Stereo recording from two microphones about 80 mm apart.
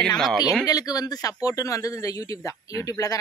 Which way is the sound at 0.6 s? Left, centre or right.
Left.